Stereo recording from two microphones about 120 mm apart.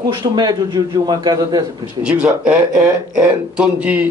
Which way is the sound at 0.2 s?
35° right (ahead or behind).